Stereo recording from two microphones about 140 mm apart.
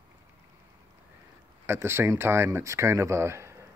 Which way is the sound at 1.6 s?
15° right (ahead or behind).